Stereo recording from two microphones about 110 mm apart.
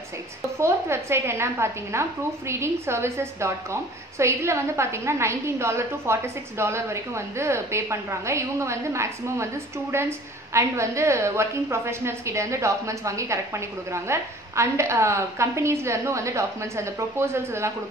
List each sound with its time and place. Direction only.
0.6 s a woman's voice: 25° right (ahead or behind)